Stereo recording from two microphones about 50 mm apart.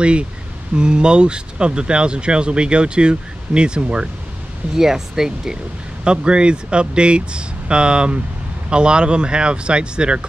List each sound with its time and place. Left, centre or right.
0.7 s speech: centre